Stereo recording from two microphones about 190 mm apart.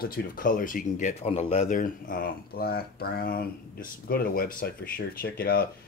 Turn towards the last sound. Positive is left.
turn(degrees=50)  # may be behind; listen again after turning